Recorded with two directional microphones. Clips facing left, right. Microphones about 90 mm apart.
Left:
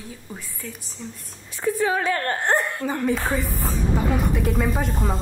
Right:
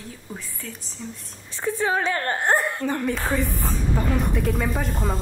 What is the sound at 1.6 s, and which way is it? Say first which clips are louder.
Speech: left 1 dB; 30° right (ahead or behind).